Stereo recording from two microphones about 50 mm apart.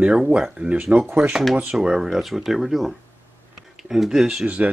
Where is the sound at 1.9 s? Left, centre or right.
Centre.